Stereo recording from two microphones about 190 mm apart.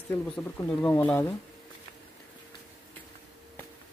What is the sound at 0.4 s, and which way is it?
Speech, 10° left (ahead or behind).